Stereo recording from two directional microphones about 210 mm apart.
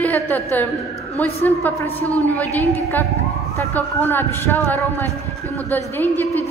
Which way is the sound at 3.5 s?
10° left (ahead or behind).